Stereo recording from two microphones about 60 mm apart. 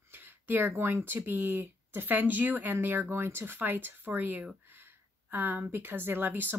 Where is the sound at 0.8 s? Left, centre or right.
Right.